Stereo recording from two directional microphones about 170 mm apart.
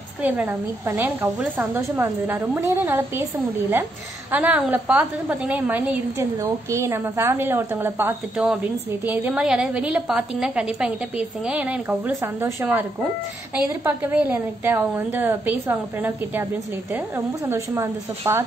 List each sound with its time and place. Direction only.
0.2 s a woman's voice: 10° right (ahead or behind)
4.3 s a woman's voice: 10° right (ahead or behind)
17.5 s a woman's voice: 15° right (ahead or behind)